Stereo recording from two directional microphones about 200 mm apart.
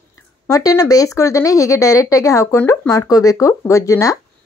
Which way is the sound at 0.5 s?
15° left (ahead or behind).